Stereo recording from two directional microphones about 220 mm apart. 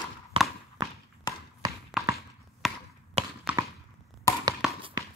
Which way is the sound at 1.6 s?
15° right (ahead or behind).